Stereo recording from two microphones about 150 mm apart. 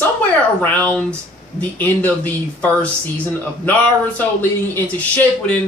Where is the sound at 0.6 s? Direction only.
10° left (ahead or behind).